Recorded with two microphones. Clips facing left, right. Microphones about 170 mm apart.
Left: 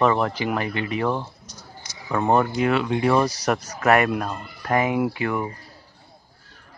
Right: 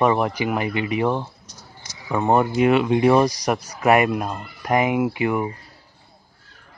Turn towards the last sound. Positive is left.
turn(degrees=-15)  # may be behind; listen again after turning